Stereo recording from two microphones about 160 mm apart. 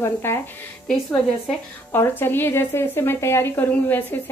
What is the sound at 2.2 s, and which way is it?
A woman's voice, 15° left (ahead or behind).